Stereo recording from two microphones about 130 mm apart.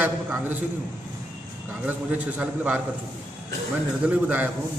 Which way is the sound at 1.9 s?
10° right (ahead or behind).